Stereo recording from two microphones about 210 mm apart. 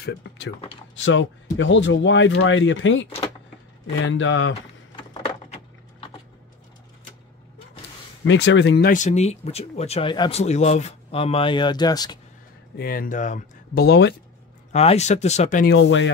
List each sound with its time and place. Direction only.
0.2 s speech: 55° left (ahead or behind)
4.9 s typing: 25° left (ahead or behind)
8.3 s speech: 60° left (ahead or behind); by 10.4 s 20° left (ahead or behind)
10.4 s speech: 30° left (ahead or behind)
12.7 s speech: 45° left (ahead or behind)
13.8 s speech: 55° left (ahead or behind)
14.7 s speech: 30° left (ahead or behind)
15.6 s speech: 60° left (ahead or behind)